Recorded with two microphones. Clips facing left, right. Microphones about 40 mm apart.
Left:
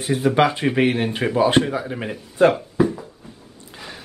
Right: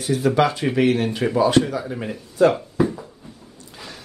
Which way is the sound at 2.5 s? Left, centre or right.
Centre.